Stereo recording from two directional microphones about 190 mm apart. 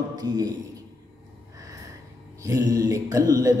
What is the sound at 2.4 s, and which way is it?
A man's voice, 20° right (ahead or behind).